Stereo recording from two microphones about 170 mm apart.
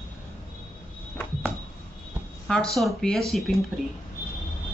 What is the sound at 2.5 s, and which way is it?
Speech, 5° left (ahead or behind).